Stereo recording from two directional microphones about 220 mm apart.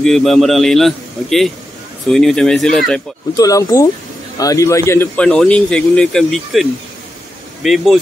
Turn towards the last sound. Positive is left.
turn(degrees=0)  # may be behind; listen again after turning